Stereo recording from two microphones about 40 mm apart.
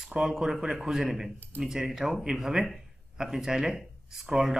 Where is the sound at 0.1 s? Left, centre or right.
Centre.